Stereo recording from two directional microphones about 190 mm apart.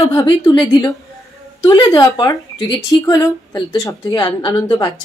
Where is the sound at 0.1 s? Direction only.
20° left (ahead or behind).